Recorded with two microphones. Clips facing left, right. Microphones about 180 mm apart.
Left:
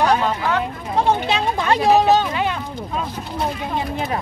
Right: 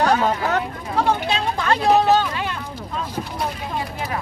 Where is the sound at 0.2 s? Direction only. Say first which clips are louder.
Even; 45° right (ahead or behind).